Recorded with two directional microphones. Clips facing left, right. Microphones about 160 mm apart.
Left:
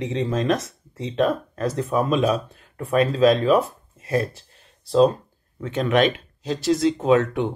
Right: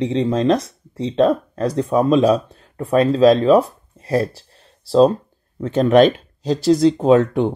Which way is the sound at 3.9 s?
30° right (ahead or behind).